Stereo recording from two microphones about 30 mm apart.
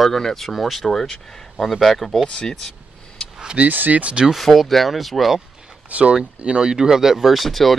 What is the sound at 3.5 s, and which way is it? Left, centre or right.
Speech, right.